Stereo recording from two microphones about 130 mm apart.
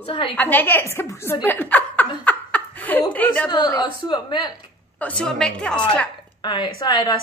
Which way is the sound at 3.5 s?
35° left (ahead or behind).